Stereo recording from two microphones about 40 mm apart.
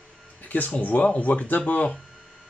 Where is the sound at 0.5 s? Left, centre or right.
Left.